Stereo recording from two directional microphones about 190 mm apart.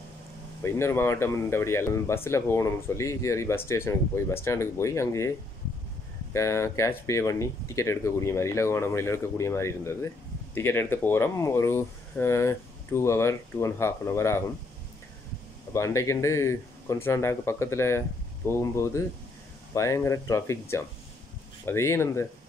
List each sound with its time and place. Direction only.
0.6 s speech: 15° left (ahead or behind)
6.3 s speech: 15° left (ahead or behind)
15.7 s speech: 15° left (ahead or behind)